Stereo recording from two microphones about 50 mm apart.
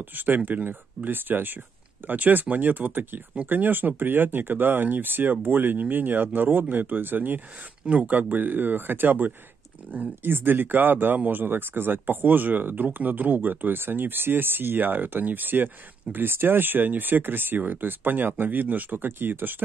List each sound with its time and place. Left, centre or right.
0.0 s speech: right
7.8 s speech: right
8.1 s speech: right